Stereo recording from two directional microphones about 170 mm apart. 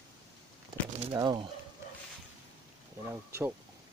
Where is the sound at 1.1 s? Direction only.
25° right (ahead or behind).